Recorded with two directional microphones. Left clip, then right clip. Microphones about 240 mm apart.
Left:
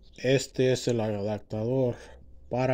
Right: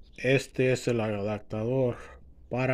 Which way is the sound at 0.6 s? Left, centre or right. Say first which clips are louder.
Left 1 dB; left.